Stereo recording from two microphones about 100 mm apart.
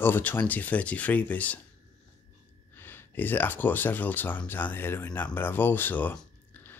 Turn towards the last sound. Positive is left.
turn(degrees=15)  # may be behind; listen again after turning